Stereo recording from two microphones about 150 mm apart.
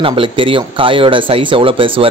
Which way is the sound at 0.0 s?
35° right (ahead or behind).